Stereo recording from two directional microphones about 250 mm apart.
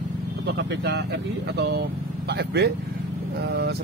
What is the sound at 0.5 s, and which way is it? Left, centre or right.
Speech, right.